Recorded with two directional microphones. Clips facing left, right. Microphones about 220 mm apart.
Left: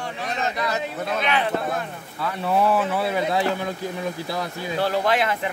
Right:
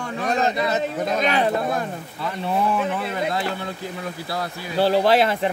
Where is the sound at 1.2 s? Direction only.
40° right (ahead or behind).